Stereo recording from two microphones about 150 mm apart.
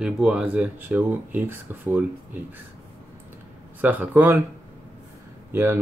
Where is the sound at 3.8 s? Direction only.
10° right (ahead or behind).